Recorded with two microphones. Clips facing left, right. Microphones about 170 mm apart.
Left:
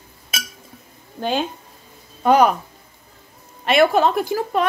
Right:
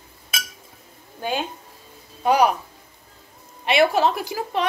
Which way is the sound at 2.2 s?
10° right (ahead or behind).